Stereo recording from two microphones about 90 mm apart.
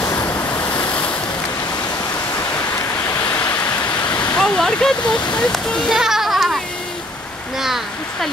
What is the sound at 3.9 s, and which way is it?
Waterfall, 55° left (ahead or behind).